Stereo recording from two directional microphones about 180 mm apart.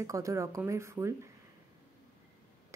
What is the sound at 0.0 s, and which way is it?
A woman's voice, 15° right (ahead or behind).